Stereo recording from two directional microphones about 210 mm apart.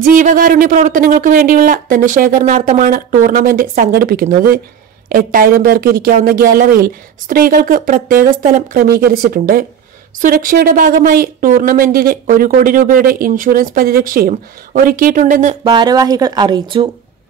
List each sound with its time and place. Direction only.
0.0 s speech: 40° right (ahead or behind)
15.7 s speech: 20° right (ahead or behind)